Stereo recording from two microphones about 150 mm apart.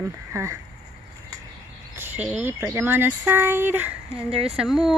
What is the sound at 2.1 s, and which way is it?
A woman's voice, 10° right (ahead or behind).